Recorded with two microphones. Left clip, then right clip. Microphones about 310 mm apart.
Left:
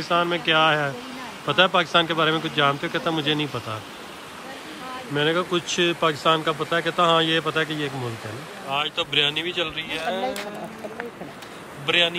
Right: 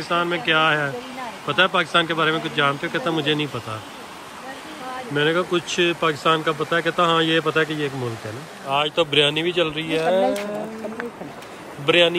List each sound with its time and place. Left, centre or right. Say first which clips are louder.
0.1 s speech: right 1 dB; centre
5.1 s speech: right 2 dB; centre
11.8 s speech: right 4 dB; centre